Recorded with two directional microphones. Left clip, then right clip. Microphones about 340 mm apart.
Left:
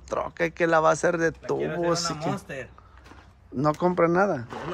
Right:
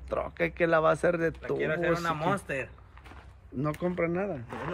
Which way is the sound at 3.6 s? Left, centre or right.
Centre.